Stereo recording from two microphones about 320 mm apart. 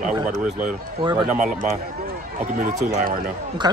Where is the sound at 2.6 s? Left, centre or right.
Right.